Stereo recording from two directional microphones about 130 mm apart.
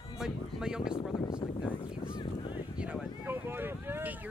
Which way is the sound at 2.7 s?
10° right (ahead or behind).